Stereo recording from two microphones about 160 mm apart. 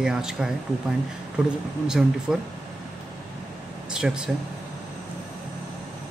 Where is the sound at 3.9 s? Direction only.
5° right (ahead or behind).